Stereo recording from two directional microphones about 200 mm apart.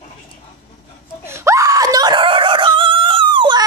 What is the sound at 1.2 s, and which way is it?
Screaming, 15° right (ahead or behind).